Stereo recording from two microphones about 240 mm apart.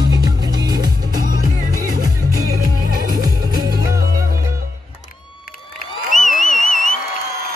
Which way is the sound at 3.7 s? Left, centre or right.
Centre.